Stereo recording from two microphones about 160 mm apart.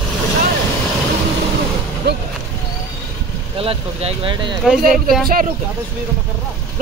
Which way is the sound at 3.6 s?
35° right (ahead or behind).